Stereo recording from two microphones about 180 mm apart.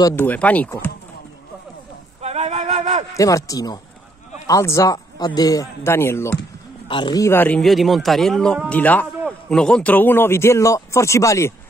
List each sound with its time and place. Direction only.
0.0 s a man's voice: 10° left (ahead or behind)
2.2 s a sound: 40° right (ahead or behind)
3.2 s a man's voice: 20° left (ahead or behind)
6.9 s a man's voice: 25° left (ahead or behind)